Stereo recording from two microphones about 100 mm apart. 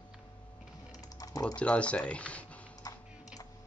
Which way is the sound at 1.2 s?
35° left (ahead or behind).